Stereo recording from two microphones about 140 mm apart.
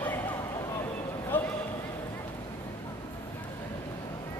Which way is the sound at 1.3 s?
15° left (ahead or behind).